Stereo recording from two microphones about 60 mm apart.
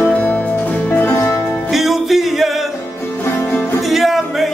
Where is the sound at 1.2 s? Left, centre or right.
Left.